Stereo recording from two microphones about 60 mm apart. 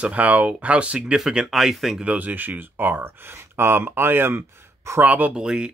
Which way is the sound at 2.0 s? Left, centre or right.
Right.